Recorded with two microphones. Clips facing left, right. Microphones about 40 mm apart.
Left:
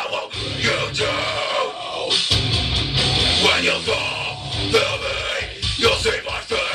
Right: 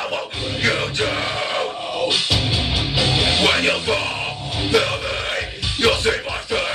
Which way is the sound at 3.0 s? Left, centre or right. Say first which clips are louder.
Right 1 dB; centre.